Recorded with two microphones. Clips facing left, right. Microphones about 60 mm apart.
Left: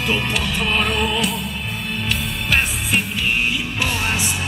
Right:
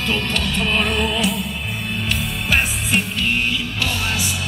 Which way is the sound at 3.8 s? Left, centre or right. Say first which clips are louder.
Left 2 dB; left.